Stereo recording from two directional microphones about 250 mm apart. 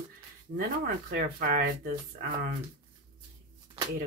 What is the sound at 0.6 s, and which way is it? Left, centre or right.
Speech, right.